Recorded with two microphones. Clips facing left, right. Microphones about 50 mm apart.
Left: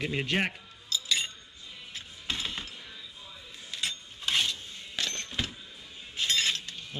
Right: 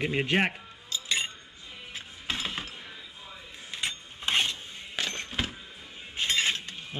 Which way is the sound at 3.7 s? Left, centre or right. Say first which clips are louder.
Right 1 dB; right.